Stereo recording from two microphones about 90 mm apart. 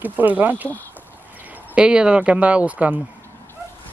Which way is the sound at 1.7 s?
10° right (ahead or behind).